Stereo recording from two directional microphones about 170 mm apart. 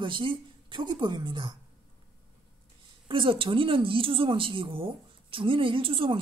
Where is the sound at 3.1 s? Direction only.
30° right (ahead or behind).